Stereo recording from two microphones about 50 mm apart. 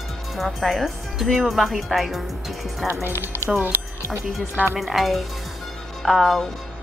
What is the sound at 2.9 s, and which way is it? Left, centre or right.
Speech, right.